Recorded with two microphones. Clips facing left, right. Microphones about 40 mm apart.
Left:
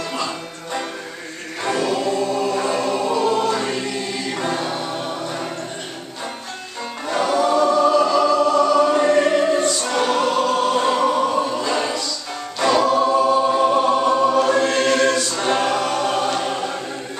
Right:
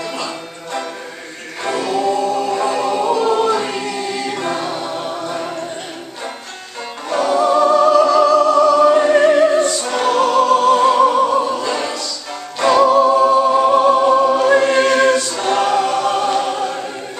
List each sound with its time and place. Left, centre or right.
1.6 s choir: centre
2.6 s choir: centre
3.4 s choir: centre
7.1 s music: centre
7.3 s choir: centre
7.9 s music: centre
8.8 s music: centre
10.8 s opera: centre
12.5 s music: centre
13.3 s music: centre
13.6 s music: centre
14.6 s choir: centre
15.4 s choir: centre